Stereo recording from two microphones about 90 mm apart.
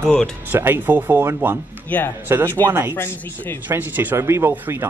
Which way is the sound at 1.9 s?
20° left (ahead or behind).